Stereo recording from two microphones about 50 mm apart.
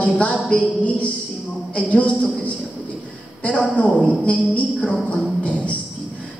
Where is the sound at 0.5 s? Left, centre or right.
Left.